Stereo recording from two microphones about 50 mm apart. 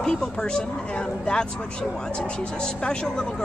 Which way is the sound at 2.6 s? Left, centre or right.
Centre.